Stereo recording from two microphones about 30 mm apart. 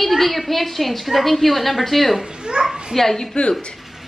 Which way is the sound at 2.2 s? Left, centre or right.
Right.